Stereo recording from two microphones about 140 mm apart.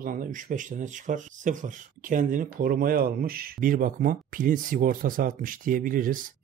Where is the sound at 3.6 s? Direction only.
80° right.